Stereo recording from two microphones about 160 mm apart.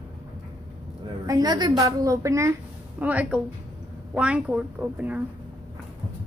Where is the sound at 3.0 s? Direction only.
10° right (ahead or behind).